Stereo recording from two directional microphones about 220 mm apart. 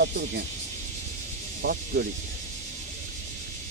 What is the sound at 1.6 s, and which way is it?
Speech, 50° right (ahead or behind).